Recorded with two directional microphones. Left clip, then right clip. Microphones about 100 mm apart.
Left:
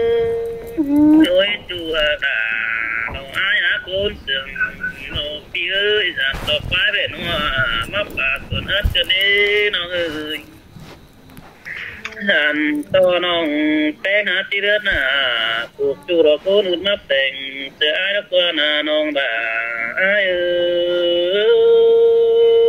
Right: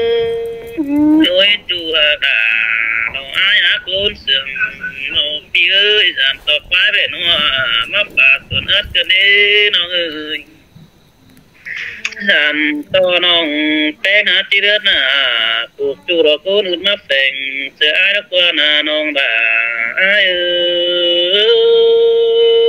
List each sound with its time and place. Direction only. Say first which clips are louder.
0.0 s music: right 2 dB; 25° right (ahead or behind)
12.0 s speech: right 4 dB; 20° right (ahead or behind)